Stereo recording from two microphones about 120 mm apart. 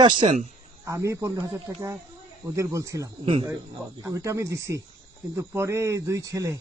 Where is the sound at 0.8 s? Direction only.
25° right (ahead or behind).